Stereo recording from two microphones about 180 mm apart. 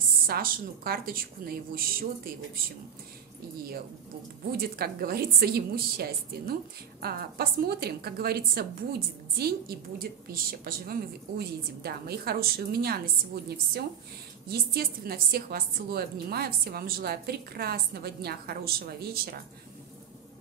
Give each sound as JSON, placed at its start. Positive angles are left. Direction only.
{"t": 0.3, "sound": "a woman's voice", "side_deg": -55}
{"t": 4.5, "sound": "a woman's voice", "side_deg": -60}